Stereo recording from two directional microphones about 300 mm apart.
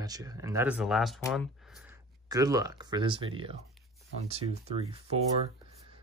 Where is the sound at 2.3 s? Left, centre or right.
Centre.